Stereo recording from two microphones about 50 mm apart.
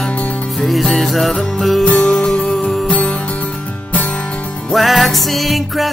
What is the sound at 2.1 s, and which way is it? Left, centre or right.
Music, centre.